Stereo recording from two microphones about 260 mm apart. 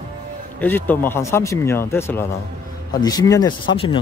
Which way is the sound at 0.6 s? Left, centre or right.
Centre.